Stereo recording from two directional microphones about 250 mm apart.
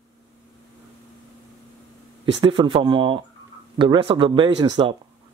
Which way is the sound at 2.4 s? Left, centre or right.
Centre.